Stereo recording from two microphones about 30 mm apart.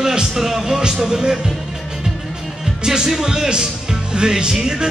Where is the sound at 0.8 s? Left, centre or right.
Right.